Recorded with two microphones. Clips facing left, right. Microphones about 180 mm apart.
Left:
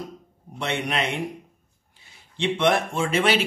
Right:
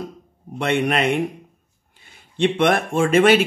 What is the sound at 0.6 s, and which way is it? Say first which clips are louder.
Speech: right 7 dB; 55° right (ahead or behind).